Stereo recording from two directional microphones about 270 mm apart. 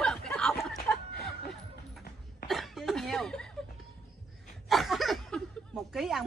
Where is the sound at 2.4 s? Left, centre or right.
Centre.